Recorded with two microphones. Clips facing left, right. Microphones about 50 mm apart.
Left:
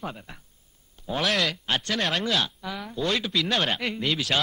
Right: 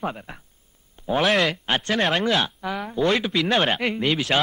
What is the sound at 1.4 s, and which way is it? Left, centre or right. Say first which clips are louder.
A man's voice: right 4 dB; right.